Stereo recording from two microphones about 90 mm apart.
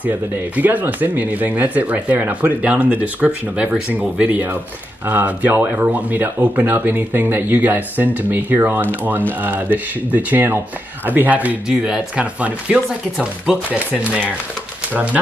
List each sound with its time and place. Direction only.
0.6 s speech: 20° right (ahead or behind)